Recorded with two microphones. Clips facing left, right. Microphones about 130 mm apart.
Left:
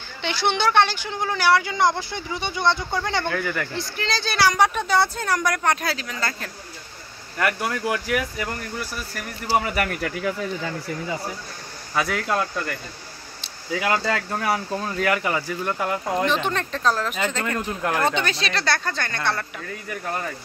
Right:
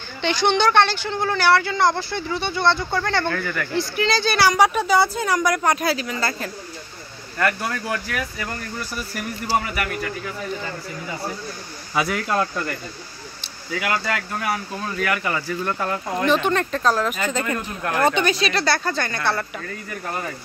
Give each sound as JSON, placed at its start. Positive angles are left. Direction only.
{"t": 0.2, "sound": "speech", "side_deg": 5}
{"t": 3.7, "sound": "a woman's voice", "side_deg": -5}
{"t": 7.3, "sound": "speech", "side_deg": 15}
{"t": 11.9, "sound": "speech", "side_deg": -5}
{"t": 13.7, "sound": "speech", "side_deg": 25}
{"t": 16.3, "sound": "a woman's voice", "side_deg": -5}